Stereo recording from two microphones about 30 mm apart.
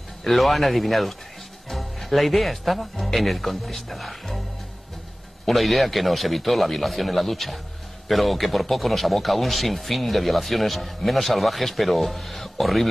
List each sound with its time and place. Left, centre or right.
0.2 s speech: centre
5.5 s speech: centre